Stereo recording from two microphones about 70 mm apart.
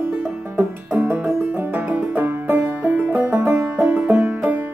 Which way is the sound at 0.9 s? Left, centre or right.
Right.